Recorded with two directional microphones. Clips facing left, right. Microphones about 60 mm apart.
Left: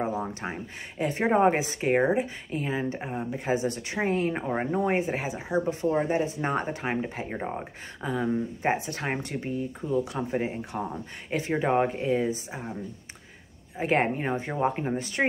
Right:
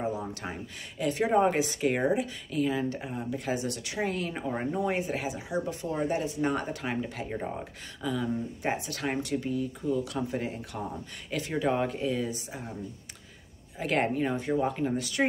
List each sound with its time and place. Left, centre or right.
0.0 s speech: left
13.7 s speech: left